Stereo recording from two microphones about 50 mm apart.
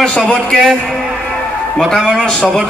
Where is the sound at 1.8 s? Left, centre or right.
Centre.